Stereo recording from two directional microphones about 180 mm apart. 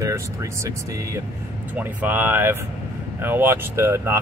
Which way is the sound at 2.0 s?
10° right (ahead or behind).